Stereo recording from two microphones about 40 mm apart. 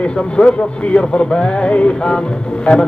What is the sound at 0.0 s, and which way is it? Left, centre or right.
Speech, left.